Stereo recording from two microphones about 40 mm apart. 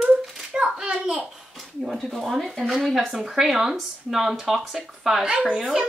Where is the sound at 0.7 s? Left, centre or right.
Centre.